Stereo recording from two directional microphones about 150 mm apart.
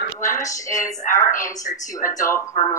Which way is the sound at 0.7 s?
60° left (ahead or behind).